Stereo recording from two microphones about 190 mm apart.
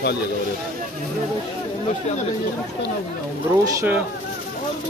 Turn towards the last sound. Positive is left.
turn(degrees=-10)  # may be behind; listen again after turning